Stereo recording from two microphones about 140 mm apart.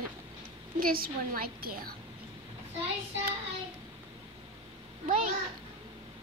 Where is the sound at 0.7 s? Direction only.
90° right.